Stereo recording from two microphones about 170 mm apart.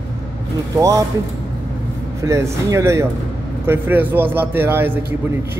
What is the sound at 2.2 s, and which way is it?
A man's voice, 15° right (ahead or behind).